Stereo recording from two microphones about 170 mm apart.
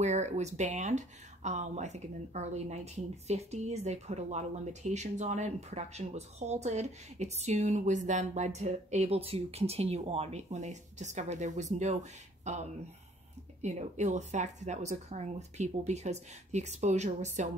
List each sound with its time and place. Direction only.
0.0 s speech: 40° right (ahead or behind)